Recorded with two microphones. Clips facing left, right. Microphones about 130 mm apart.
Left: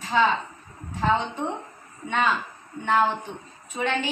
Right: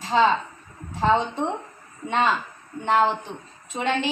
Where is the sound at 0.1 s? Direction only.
35° right (ahead or behind).